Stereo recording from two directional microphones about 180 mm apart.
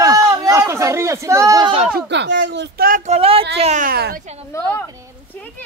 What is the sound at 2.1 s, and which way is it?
Speech, 75° right (ahead or behind).